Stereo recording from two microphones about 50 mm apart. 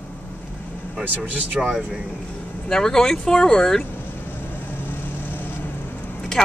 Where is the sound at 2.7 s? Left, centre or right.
Centre.